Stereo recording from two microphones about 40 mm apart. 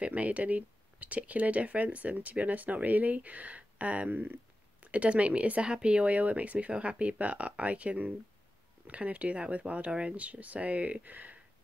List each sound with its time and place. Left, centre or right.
0.0 s speech: right
4.1 s speech: right